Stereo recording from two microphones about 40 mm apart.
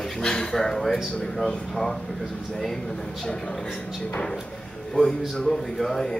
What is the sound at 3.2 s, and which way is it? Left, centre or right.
Speech, left.